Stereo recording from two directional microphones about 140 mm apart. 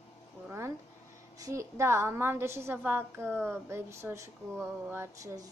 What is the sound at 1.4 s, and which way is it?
A woman's voice, 20° right (ahead or behind).